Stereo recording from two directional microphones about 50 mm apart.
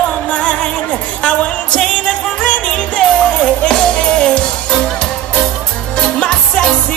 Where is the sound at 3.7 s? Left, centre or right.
Centre.